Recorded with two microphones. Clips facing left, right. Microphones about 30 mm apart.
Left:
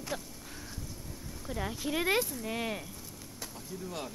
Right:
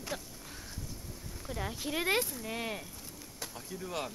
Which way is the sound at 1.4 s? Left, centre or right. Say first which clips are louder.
Left 2 dB; centre.